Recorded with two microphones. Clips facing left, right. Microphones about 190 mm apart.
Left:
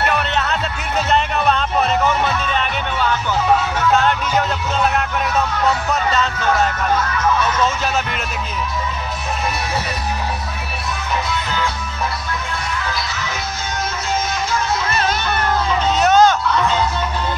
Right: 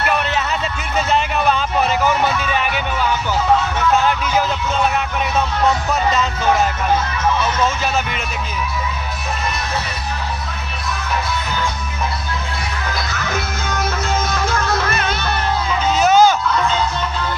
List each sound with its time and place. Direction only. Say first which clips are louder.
0.1 s music: even; 5° right (ahead or behind)
3.9 s a sound: even; 5° right (ahead or behind)
6.1 s music: right 1 dB; 5° right (ahead or behind)
7.6 s speech: even; centre (ahead or behind)
12.9 s music: right 2 dB; 55° right (ahead or behind)
15.0 s music: left 2 dB; 40° left (ahead or behind)
16.0 s a sound: right 1 dB; 5° right (ahead or behind)